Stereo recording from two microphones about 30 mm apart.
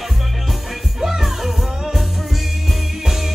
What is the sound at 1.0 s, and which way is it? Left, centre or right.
Music, centre.